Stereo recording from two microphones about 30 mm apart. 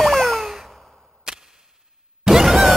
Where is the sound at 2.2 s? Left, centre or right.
Centre.